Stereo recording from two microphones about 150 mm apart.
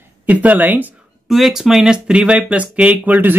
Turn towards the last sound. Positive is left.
turn(degrees=-10)  # may be behind; listen again after turning